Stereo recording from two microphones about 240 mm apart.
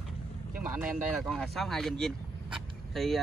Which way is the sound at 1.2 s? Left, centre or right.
Centre.